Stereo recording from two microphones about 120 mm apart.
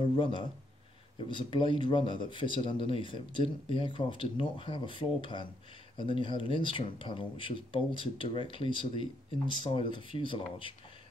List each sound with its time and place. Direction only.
0.0 s speech: 45° left (ahead or behind)